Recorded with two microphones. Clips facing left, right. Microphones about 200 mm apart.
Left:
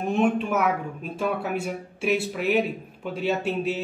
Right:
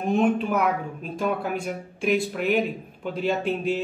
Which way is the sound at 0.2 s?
5° left (ahead or behind).